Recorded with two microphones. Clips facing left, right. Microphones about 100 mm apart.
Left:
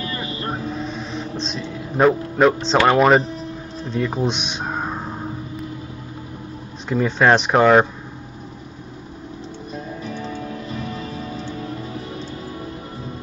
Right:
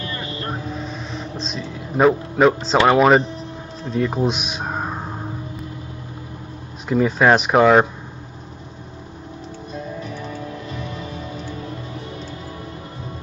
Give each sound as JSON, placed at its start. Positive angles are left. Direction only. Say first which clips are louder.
{"t": 0.0, "sound": "vehicle", "louder": "left 2 dB", "side_deg": 25}
{"t": 0.7, "sound": "a sound", "louder": "left 2 dB", "side_deg": 0}
{"t": 1.4, "sound": "speech", "louder": "left 1 dB", "side_deg": 0}
{"t": 6.9, "sound": "speech", "louder": "right 1 dB", "side_deg": -5}
{"t": 10.9, "sound": "music", "louder": "left 1 dB", "side_deg": 35}